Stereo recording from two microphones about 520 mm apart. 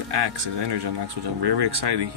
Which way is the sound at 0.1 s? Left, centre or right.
Right.